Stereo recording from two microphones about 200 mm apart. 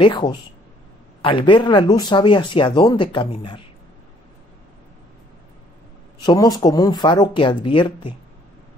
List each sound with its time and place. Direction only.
0.0 s speech: 25° left (ahead or behind)
6.2 s speech: 20° left (ahead or behind)